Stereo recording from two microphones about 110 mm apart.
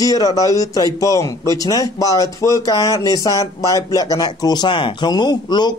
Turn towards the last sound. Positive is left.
turn(degrees=40)  # may be behind; listen again after turning